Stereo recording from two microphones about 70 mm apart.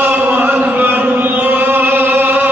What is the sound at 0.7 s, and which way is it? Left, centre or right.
Chant, right.